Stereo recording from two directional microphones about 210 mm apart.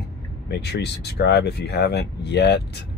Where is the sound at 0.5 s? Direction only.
50° left (ahead or behind).